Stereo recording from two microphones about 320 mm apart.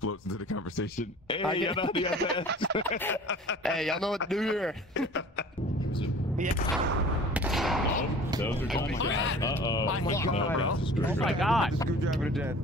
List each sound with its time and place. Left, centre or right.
0.0 s speech: left
1.3 s speech: centre
3.6 s a man's voice: centre
7.3 s gunshot: centre
8.7 s speech: left
9.4 s speech: centre
11.1 s a man's voice: centre